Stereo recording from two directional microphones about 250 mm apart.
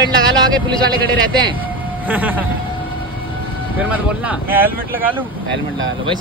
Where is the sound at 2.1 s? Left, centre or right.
Centre.